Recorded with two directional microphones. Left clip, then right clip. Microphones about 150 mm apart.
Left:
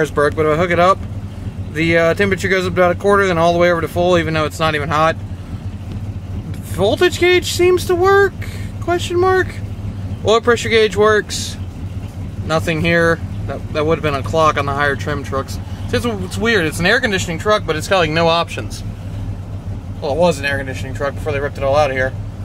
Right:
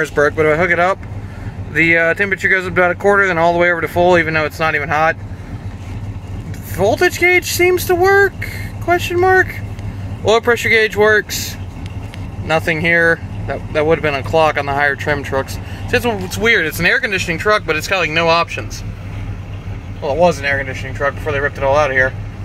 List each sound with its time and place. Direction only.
0.0 s speech: 10° left (ahead or behind)
0.6 s speech: 25° left (ahead or behind)
6.8 s speech: 20° left (ahead or behind)
12.4 s speech: 20° left (ahead or behind)
20.0 s speech: 20° left (ahead or behind)